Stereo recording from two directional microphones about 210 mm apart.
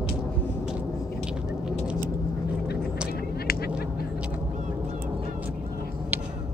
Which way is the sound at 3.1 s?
50° left (ahead or behind).